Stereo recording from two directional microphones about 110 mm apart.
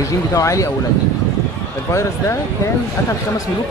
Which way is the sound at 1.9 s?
25° left (ahead or behind).